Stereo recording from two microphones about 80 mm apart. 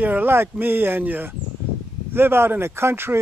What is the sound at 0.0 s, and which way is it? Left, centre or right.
Speech, right.